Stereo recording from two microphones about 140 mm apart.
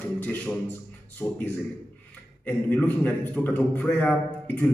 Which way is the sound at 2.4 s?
15° left (ahead or behind).